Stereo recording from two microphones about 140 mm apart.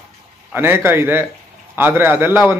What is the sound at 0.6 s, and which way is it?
Speech, 15° right (ahead or behind).